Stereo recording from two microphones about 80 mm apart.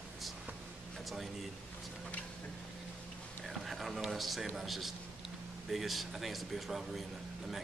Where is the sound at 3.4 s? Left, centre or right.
Centre.